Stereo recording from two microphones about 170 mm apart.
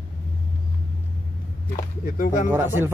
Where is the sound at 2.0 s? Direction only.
50° left (ahead or behind).